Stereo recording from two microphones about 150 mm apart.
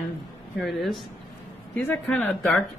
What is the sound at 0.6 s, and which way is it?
Speech, centre (ahead or behind).